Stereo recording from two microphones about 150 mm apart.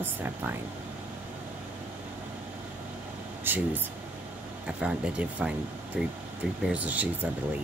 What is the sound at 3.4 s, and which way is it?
Speech, 10° right (ahead or behind).